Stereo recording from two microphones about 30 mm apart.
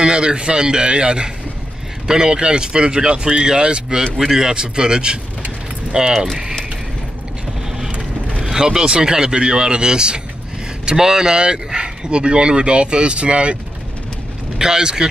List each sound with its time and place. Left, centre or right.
0.0 s speech: right
4.2 s speech: centre
8.4 s speech: centre; by 13.6 s right
14.6 s speech: right